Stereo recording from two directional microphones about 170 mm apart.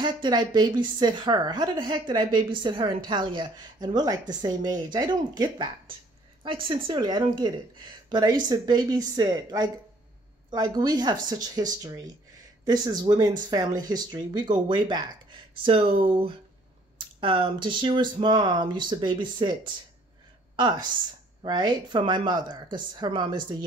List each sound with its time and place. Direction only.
0.0 s a woman's voice: 25° right (ahead or behind)